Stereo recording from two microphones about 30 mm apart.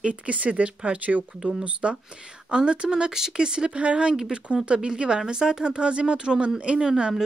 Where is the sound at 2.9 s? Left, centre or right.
Right.